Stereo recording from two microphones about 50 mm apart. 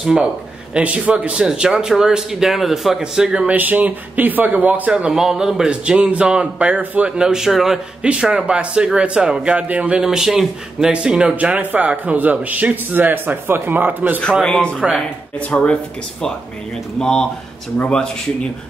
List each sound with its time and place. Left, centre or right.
0.0 s speech: centre
0.7 s speech: right
1.3 s speech: centre
3.0 s speech: centre
3.4 s speech: right
5.1 s speech: centre
8.0 s speech: centre
10.0 s speech: centre
10.9 s speech: centre
11.6 s speech: right
14.4 s speech: centre